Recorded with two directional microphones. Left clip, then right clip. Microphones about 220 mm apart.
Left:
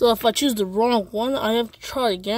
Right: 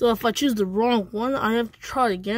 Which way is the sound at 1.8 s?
30° right (ahead or behind).